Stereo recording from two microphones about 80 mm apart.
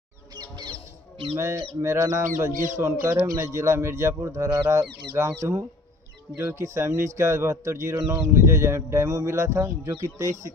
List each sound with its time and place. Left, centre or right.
0.4 s bird: right
1.3 s speech: right
3.3 s speech: right
6.3 s speech: right